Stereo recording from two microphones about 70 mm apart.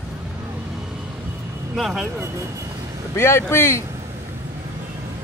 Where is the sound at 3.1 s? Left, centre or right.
Left.